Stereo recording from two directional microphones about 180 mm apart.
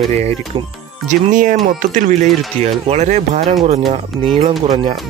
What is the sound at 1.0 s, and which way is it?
Speech, 45° right (ahead or behind).